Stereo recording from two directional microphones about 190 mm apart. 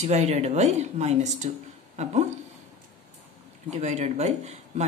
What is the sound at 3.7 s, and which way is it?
Speech, 35° right (ahead or behind).